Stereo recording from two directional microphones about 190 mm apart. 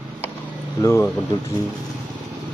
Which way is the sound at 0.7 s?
15° left (ahead or behind).